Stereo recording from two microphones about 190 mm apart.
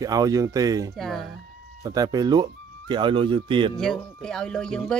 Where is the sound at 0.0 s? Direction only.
20° right (ahead or behind).